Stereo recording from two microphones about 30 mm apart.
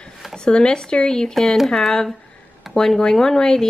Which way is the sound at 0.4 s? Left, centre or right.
Left.